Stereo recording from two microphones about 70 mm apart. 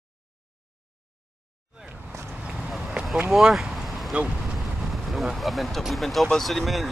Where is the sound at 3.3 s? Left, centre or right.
Centre.